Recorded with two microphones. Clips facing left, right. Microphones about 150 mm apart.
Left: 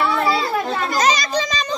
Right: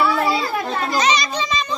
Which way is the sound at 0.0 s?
5° right (ahead or behind).